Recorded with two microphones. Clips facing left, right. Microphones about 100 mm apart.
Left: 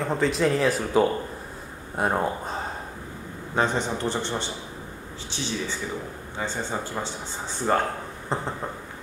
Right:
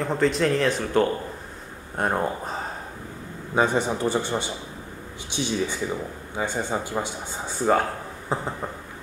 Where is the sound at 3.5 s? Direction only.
10° right (ahead or behind).